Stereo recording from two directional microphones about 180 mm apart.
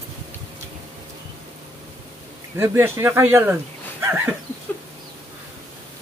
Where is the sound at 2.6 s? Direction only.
15° right (ahead or behind).